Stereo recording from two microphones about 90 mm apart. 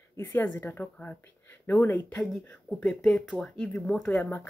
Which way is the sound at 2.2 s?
Centre (ahead or behind).